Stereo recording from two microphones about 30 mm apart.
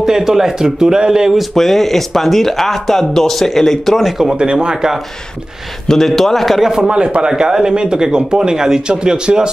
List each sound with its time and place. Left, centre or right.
0.0 s a man's voice: centre
1.5 s speech: centre
4.0 s a man's voice: centre
4.4 s a man's voice: right
5.9 s speech: centre
6.6 s a man's voice: centre
6.9 s a man's voice: right